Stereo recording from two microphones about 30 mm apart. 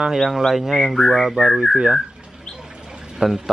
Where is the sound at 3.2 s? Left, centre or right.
Right.